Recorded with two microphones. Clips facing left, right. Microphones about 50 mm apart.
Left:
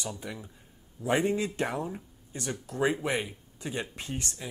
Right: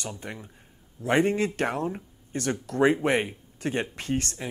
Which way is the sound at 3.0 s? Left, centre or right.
Right.